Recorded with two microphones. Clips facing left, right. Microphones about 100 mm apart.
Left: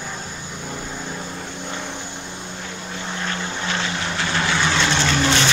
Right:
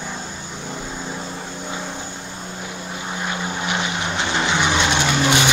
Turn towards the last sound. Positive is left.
turn(degrees=-15)  # may be behind; listen again after turning